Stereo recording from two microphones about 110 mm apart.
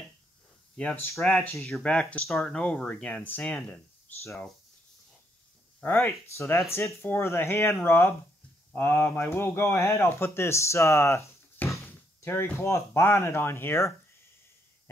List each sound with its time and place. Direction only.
0.8 s speech: 10° left (ahead or behind)
1.1 s speech: centre (ahead or behind)
1.4 s speech: 15° left (ahead or behind)
5.8 s speech: 15° left (ahead or behind)